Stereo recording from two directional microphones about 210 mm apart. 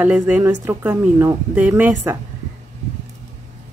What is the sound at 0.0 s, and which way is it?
Speech, 5° right (ahead or behind).